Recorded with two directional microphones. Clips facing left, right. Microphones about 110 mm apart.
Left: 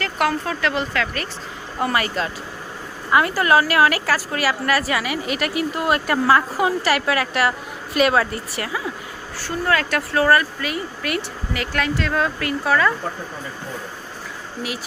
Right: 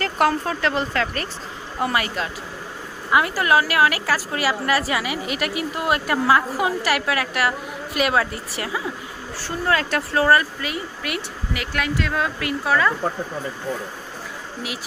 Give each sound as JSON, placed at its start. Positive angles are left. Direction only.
{"t": 0.0, "sound": "speech", "side_deg": -35}
{"t": 1.8, "sound": "a woman's voice", "side_deg": -10}